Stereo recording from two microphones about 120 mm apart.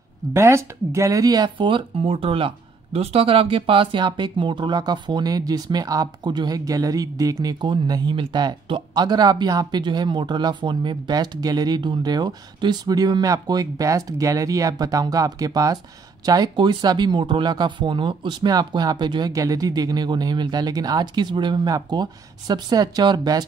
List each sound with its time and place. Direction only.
0.3 s speech: 20° right (ahead or behind)